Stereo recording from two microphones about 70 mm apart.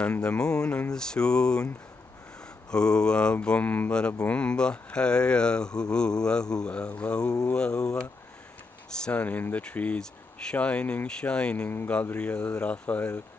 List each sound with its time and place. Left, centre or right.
0.2 s speech: centre
2.7 s speech: centre